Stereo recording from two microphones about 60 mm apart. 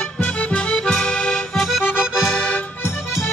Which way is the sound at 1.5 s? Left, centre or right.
Centre.